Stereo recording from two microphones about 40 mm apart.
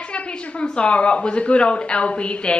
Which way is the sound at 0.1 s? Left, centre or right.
Left.